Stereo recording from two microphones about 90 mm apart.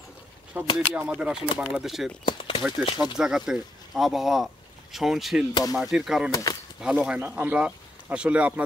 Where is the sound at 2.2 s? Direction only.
85° left.